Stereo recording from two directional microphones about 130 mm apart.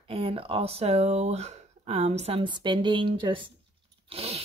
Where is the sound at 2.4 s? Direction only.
35° right (ahead or behind).